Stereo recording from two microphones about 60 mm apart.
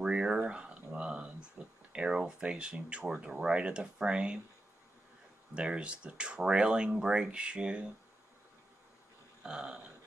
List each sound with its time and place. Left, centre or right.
0.0 s a sound: centre
1.9 s speech: centre
5.5 s speech: centre
9.4 s speech: centre